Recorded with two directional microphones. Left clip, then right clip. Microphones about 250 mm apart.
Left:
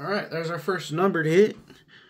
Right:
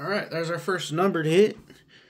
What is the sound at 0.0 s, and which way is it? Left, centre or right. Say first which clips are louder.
Speech: even; centre.